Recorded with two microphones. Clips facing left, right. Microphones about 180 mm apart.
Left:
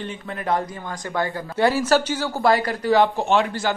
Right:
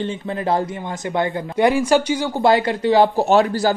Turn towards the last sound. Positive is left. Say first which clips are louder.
# right 5 dB
turn(degrees=-40)  # may be behind; listen again after turning